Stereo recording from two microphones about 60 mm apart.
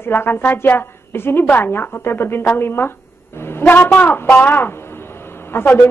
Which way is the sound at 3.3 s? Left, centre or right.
Left.